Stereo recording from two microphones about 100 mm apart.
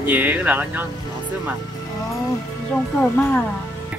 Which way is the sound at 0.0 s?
20° right (ahead or behind).